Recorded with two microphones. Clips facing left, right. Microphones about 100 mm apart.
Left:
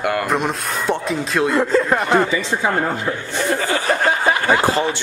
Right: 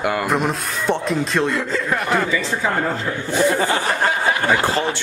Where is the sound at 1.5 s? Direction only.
40° left (ahead or behind).